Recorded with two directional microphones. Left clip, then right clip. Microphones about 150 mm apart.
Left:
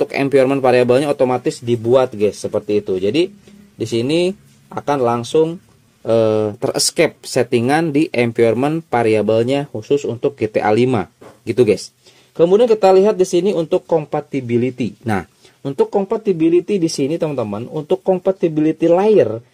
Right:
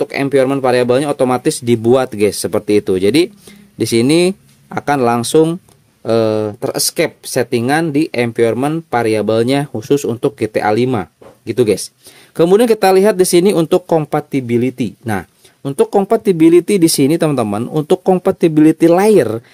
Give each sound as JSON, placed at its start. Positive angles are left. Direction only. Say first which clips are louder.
{"t": 0.0, "sound": "speech", "louder": "right 1 dB", "side_deg": -5}
{"t": 1.2, "sound": "speech", "louder": "right 2 dB", "side_deg": -25}
{"t": 1.5, "sound": "speech", "louder": "right 2 dB", "side_deg": -45}
{"t": 6.0, "sound": "speech", "louder": "even", "side_deg": -20}
{"t": 9.3, "sound": "speech", "louder": "right 2 dB", "side_deg": -25}
{"t": 9.8, "sound": "speech", "louder": "right 3 dB", "side_deg": -40}
{"t": 10.4, "sound": "speech", "louder": "even", "side_deg": -10}
{"t": 12.4, "sound": "speech", "louder": "right 1 dB", "side_deg": -45}
{"t": 14.1, "sound": "speech", "louder": "right 3 dB", "side_deg": -25}
{"t": 15.9, "sound": "speech", "louder": "right 5 dB", "side_deg": -45}